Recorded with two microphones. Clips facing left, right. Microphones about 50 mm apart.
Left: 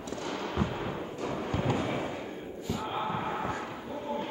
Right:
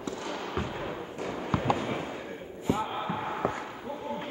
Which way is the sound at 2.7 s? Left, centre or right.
Right.